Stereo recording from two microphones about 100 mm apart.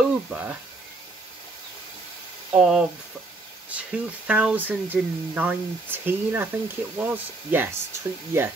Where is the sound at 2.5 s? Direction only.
5° right (ahead or behind).